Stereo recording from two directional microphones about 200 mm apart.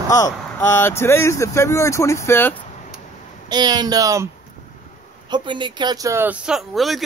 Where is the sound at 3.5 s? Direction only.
20° right (ahead or behind).